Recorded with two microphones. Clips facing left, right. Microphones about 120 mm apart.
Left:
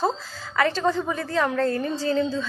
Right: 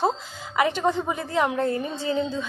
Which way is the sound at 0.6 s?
15° right (ahead or behind).